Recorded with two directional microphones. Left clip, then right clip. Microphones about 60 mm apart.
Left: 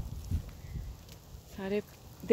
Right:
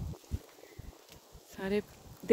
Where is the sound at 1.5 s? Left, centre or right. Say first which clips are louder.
Right 1 dB; right.